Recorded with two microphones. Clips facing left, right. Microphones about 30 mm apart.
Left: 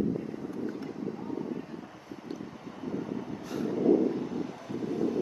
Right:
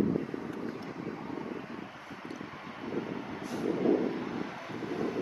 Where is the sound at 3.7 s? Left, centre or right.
Right.